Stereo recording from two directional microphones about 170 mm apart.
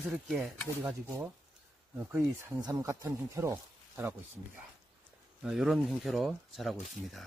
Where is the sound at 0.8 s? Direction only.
15° right (ahead or behind).